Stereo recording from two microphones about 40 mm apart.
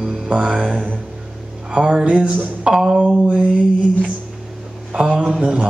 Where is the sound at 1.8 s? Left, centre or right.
Centre.